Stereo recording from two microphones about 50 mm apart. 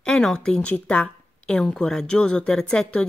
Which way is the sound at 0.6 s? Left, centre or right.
Left.